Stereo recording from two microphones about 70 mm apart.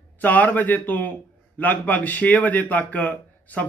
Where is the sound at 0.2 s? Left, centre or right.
Left.